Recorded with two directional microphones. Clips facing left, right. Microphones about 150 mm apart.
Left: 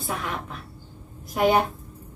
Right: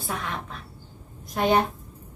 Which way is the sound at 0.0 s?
Centre (ahead or behind).